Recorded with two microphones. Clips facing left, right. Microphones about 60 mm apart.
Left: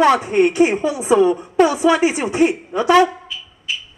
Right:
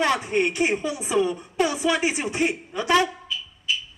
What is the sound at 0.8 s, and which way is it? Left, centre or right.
Speech, left.